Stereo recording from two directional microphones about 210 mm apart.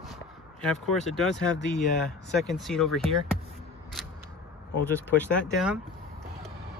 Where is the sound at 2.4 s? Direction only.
Centre (ahead or behind).